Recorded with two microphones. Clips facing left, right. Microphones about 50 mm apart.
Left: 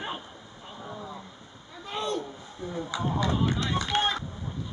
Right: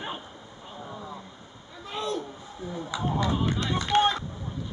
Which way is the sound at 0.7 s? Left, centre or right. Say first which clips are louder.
Even; centre.